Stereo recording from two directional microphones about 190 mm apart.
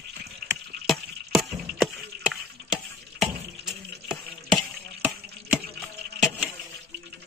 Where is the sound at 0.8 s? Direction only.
Centre (ahead or behind).